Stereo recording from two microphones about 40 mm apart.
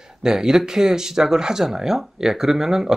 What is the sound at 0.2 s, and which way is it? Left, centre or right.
Speech, centre.